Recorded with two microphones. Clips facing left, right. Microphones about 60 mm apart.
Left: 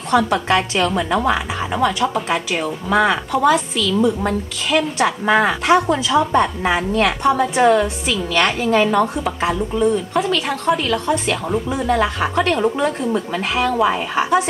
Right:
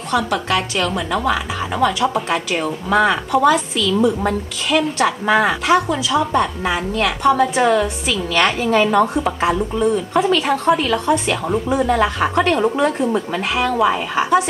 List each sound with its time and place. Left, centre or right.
0.1 s a woman's voice: left; by 2.0 s centre
2.0 s a woman's voice: centre
5.7 s a woman's voice: centre
7.2 s a woman's voice: centre